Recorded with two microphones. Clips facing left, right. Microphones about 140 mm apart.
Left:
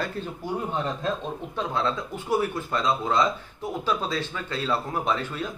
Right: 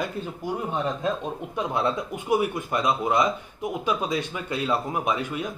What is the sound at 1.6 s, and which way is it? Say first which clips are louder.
Speech: right 2 dB; 20° right (ahead or behind).